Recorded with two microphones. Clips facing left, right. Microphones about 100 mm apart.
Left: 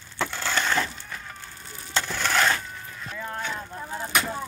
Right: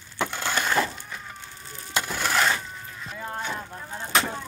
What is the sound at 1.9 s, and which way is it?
Crushing, 10° right (ahead or behind).